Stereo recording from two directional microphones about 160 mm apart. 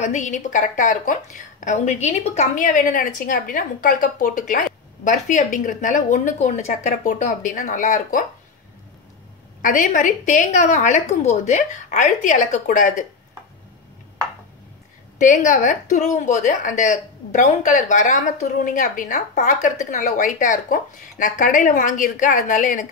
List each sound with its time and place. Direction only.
0.0 s a woman's voice: 50° left (ahead or behind)
9.6 s a woman's voice: 55° left (ahead or behind)
15.1 s a woman's voice: 50° left (ahead or behind)